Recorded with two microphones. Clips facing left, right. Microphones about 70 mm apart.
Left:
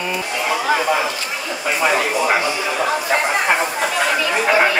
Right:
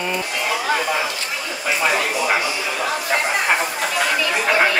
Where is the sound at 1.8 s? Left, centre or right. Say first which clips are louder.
Left 3 dB; centre.